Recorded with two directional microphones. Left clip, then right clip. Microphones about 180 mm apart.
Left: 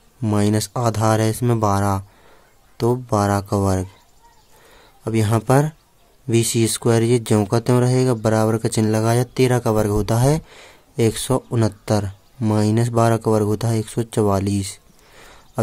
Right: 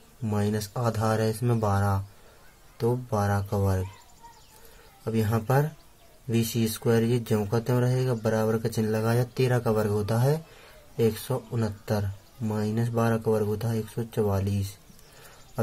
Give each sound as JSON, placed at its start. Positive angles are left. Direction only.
{"t": 0.2, "sound": "speech", "side_deg": 55}
{"t": 5.0, "sound": "speech", "side_deg": 50}